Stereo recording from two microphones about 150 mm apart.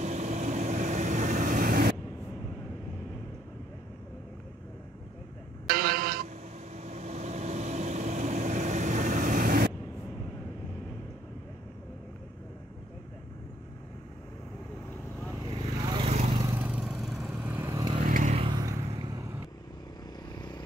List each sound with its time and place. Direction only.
0.0 s vehicle: 50° right (ahead or behind); by 2.0 s 75° right (ahead or behind)
5.7 s a sound: 80° right
6.2 s vehicle: 45° right (ahead or behind); by 9.7 s 75° right (ahead or behind)
15.3 s vehicle: 25° right (ahead or behind)
16.1 s vehicle: 45° right (ahead or behind)
16.5 s vehicle: 10° right (ahead or behind)
17.4 s vehicle: 10° right (ahead or behind)
18.0 s vehicle: 60° right (ahead or behind)
18.3 s vehicle: 35° right (ahead or behind)
20.3 s vehicle: 30° left (ahead or behind)